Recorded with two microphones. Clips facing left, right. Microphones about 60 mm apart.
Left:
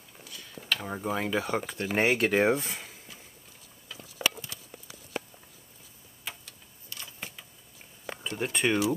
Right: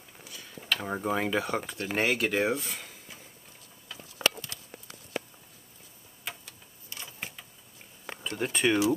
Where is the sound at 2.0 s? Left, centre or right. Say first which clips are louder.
Left 3 dB; left.